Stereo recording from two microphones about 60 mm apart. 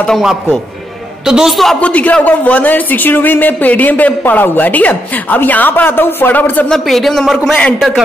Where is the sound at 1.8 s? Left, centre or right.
Left.